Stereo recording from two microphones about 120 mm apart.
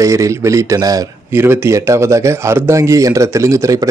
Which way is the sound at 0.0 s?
25° right (ahead or behind).